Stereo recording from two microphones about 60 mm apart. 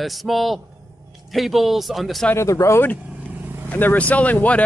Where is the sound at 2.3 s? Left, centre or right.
Left.